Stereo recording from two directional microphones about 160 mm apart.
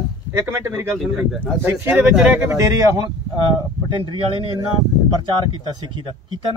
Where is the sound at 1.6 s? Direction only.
10° right (ahead or behind).